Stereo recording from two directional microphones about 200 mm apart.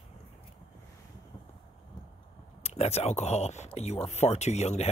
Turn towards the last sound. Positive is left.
turn(degrees=35)  # may be behind; listen again after turning